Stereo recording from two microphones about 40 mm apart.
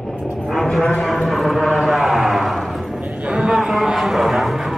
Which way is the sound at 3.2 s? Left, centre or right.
Right.